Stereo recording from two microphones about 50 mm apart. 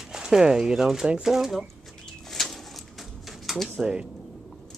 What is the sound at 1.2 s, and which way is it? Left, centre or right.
Speech, centre.